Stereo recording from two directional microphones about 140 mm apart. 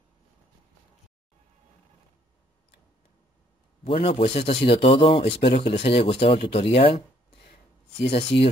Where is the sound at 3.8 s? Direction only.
45° left (ahead or behind).